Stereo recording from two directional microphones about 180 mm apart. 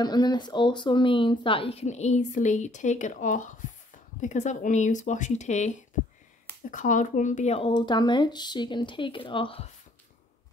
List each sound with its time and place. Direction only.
0.0 s speech: 20° left (ahead or behind)